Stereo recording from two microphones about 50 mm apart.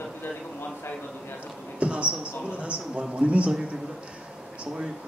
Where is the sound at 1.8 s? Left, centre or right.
Right.